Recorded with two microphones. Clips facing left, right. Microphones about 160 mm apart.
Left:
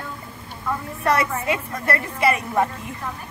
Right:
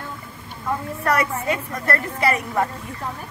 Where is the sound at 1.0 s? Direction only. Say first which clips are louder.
Left 1 dB; 20° left (ahead or behind).